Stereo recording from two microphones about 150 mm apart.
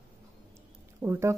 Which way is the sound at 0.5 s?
15° right (ahead or behind).